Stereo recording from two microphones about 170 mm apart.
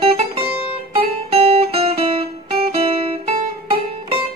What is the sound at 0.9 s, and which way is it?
Music, 35° right (ahead or behind).